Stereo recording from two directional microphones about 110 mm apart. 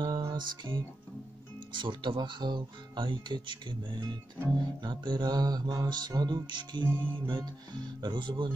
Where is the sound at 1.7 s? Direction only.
45° right (ahead or behind).